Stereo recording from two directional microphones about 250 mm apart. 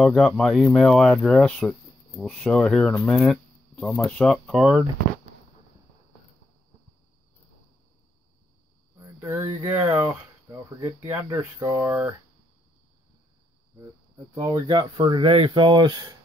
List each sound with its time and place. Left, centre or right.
0.0 s speech: centre
8.9 s speech: centre
14.3 s speech: centre